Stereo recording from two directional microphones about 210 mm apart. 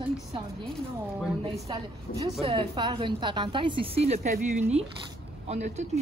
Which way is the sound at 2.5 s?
20° right (ahead or behind).